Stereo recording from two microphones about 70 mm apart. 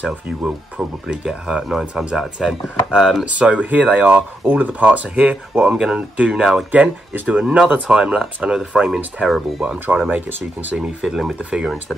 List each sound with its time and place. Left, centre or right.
0.0 s speech: centre
3.3 s speech: centre
9.7 s speech: centre
11.1 s speech: centre